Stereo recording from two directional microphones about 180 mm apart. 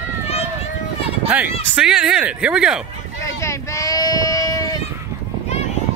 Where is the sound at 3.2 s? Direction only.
15° left (ahead or behind).